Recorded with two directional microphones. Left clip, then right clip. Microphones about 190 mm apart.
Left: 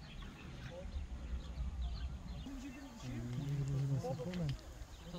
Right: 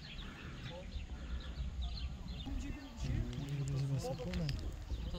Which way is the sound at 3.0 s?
70° left (ahead or behind).